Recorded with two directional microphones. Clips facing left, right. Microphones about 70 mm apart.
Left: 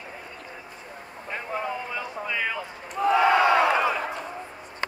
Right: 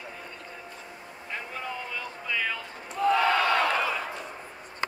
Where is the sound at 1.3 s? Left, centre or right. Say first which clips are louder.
Left 5 dB; centre.